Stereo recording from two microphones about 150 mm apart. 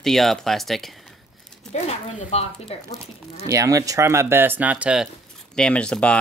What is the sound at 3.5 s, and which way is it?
Speech, 20° right (ahead or behind).